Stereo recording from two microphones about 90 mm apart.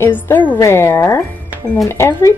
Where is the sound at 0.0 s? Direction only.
20° left (ahead or behind).